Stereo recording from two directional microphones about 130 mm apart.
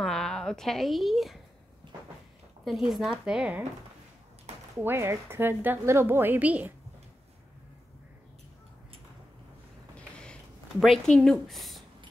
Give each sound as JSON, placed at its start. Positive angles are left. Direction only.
{"t": 0.0, "sound": "a woman's voice", "side_deg": 5}
{"t": 2.6, "sound": "a woman's voice", "side_deg": 0}
{"t": 4.7, "sound": "a woman's voice", "side_deg": -20}
{"t": 10.8, "sound": "a woman's voice", "side_deg": 0}